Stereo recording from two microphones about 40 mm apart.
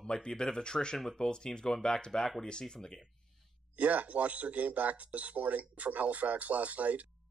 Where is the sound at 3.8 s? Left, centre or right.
Right.